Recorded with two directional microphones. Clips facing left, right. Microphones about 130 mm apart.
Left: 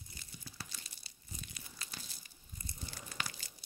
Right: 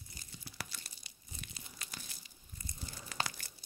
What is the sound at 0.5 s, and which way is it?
Tearing, 65° right (ahead or behind).